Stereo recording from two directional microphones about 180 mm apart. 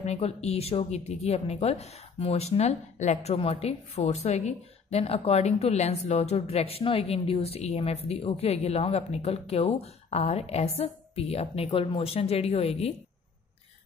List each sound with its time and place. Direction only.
0.0 s a woman's voice: 35° left (ahead or behind)